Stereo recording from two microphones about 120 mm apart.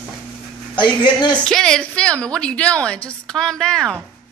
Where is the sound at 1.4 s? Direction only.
5° left (ahead or behind).